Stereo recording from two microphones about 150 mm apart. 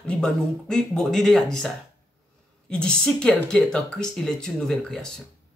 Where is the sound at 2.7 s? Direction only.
5° left (ahead or behind).